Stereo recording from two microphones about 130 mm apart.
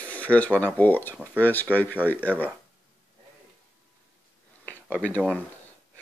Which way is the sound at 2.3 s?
Centre (ahead or behind).